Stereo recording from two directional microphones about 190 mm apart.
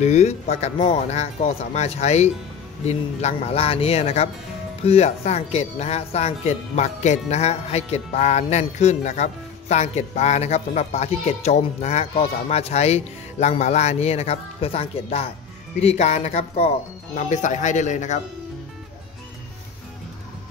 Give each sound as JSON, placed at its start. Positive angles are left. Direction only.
{"t": 0.0, "sound": "speech", "side_deg": 35}